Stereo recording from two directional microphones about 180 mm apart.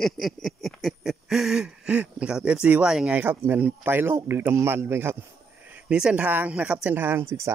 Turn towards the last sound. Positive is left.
turn(degrees=-15)  # may be behind; listen again after turning